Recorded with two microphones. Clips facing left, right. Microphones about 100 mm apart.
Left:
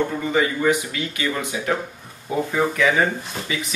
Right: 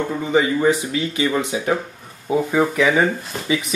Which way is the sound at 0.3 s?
25° right (ahead or behind).